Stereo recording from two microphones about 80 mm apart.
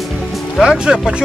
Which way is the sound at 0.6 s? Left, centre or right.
Centre.